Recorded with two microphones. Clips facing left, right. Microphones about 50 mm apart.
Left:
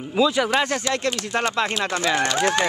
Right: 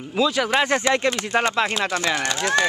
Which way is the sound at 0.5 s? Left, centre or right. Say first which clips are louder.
Right 2 dB; right.